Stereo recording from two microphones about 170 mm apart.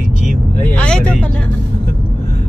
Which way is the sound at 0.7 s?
10° left (ahead or behind).